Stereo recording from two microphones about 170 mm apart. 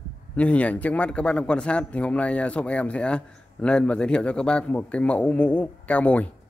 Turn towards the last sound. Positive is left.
turn(degrees=10)  # may be behind; listen again after turning